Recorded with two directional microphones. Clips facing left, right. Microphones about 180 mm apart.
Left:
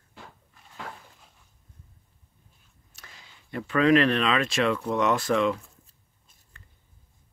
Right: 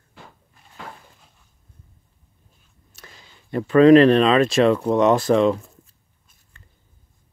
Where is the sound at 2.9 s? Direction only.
35° right (ahead or behind).